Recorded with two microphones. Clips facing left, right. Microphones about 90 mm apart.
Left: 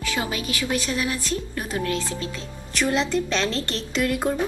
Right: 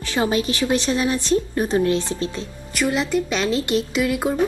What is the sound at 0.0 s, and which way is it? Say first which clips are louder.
Speech: right 6 dB; 30° right (ahead or behind).